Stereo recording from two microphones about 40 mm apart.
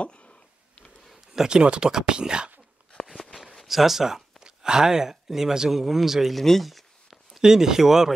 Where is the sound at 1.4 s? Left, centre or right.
Right.